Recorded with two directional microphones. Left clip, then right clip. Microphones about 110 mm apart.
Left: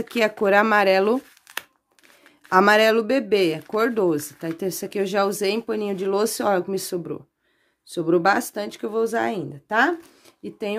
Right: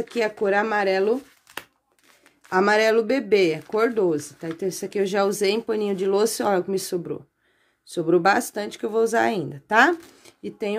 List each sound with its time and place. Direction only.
0.1 s speech: 50° left (ahead or behind)
2.5 s speech: 45° left (ahead or behind); by 8.9 s 15° left (ahead or behind)
8.9 s speech: centre (ahead or behind)